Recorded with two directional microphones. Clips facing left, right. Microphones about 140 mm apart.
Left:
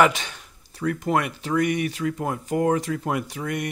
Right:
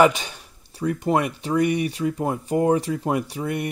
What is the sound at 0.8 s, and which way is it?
Speech, 30° right (ahead or behind).